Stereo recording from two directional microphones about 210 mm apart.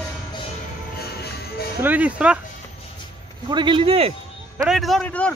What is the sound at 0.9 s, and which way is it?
Music, 50° left (ahead or behind).